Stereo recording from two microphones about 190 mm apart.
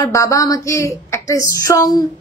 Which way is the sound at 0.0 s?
15° left (ahead or behind).